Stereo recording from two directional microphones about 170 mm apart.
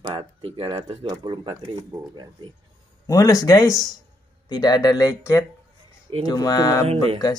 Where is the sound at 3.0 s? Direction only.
20° left (ahead or behind).